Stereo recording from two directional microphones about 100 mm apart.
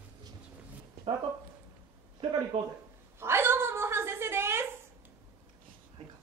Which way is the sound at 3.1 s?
25° right (ahead or behind).